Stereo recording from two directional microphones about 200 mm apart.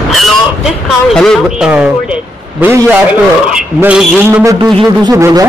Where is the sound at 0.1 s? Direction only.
Centre (ahead or behind).